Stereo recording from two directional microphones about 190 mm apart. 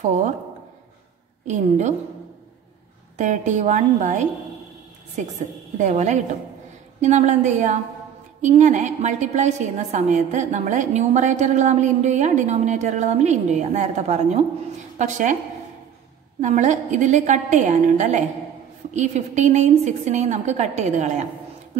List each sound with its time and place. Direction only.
1.5 s a woman's voice: 40° right (ahead or behind)
3.2 s a woman's voice: 40° right (ahead or behind)
5.8 s a woman's voice: 40° right (ahead or behind)
16.3 s a woman's voice: 40° right (ahead or behind)